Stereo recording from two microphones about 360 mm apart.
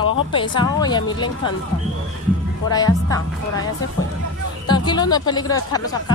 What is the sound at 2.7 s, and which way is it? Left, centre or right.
Speech, centre.